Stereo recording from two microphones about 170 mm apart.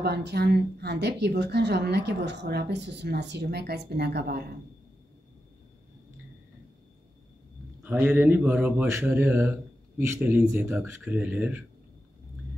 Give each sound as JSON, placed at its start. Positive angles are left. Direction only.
{"t": 0.0, "sound": "a woman's voice", "side_deg": -75}
{"t": 7.8, "sound": "speech", "side_deg": -10}